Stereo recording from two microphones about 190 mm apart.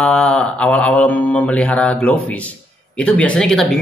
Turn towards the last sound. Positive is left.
turn(degrees=5)  # may be behind; listen again after turning